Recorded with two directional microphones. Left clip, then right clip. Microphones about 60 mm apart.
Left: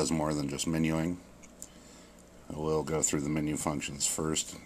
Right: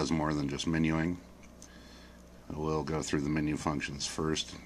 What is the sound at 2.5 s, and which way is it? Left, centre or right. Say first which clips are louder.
Speech: left 3 dB; left.